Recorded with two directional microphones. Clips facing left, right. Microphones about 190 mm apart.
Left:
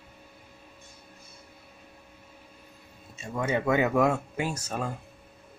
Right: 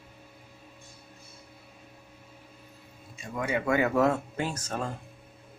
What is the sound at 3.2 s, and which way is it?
Speech, 25° left (ahead or behind).